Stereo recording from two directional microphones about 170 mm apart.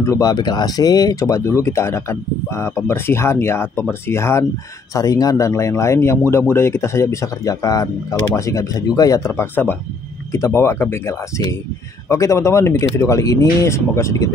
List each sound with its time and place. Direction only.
0.0 s speech: 20° left (ahead or behind)